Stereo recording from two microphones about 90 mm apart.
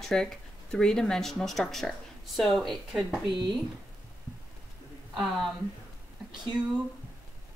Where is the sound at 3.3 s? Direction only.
60° right (ahead or behind).